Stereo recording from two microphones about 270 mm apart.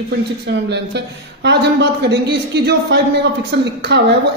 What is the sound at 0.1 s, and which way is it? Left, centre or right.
A woman's voice, right.